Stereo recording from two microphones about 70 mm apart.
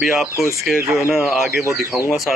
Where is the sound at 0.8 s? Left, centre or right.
Right.